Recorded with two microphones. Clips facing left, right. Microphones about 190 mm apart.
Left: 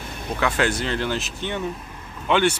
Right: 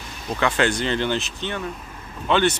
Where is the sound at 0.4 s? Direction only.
5° left (ahead or behind).